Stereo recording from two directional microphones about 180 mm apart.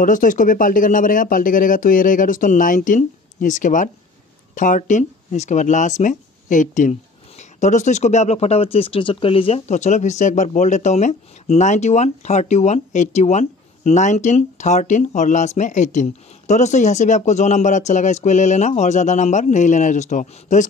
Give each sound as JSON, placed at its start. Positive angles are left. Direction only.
{"t": 0.0, "sound": "speech", "side_deg": 45}